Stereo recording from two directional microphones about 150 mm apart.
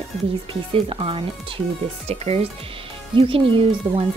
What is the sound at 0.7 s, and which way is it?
Speech, 40° right (ahead or behind).